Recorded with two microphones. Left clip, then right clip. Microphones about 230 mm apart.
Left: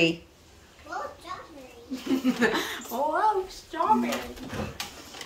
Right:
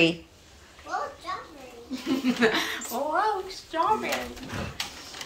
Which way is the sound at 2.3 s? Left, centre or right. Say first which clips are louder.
Right 2 dB; left.